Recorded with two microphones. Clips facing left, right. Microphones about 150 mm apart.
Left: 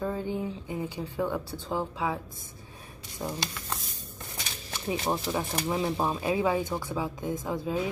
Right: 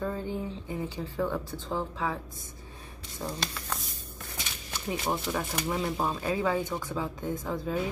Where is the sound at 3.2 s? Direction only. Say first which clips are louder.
Left 2 dB; 15° left (ahead or behind).